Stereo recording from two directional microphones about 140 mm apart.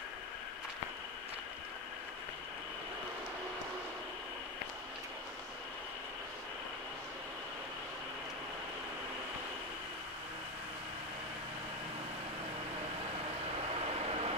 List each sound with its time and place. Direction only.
13.7 s vehicle: 45° right (ahead or behind)